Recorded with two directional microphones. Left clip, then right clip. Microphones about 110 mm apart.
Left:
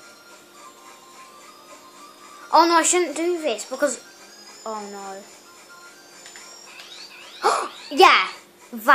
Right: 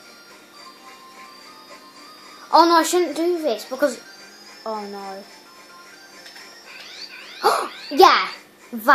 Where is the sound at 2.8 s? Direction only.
20° left (ahead or behind).